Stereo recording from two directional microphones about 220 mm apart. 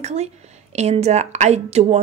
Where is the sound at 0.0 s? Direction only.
30° right (ahead or behind).